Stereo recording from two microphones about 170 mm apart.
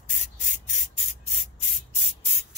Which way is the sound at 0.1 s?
45° left (ahead or behind).